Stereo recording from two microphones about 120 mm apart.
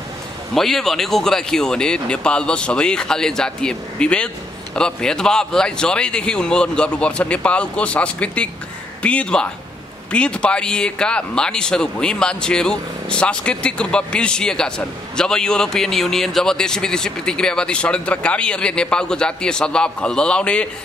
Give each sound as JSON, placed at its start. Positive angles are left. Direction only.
{"t": 0.6, "sound": "speech", "side_deg": 5}